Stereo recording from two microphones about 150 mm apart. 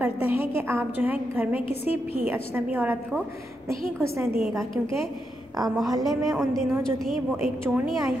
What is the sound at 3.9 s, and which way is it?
Speech, 15° right (ahead or behind).